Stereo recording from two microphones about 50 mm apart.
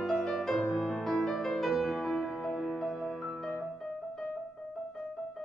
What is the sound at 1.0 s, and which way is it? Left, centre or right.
Music, centre.